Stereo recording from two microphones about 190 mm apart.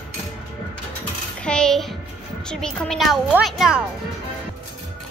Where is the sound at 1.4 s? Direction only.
5° left (ahead or behind).